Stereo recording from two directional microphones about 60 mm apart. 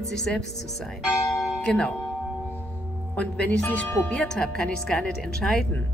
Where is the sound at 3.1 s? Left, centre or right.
Left.